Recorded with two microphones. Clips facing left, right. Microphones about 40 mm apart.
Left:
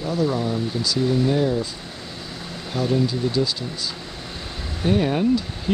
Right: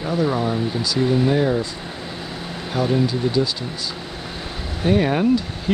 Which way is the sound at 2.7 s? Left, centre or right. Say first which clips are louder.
Right 2 dB; centre.